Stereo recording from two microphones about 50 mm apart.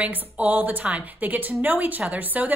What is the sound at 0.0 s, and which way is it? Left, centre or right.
A woman's voice, right.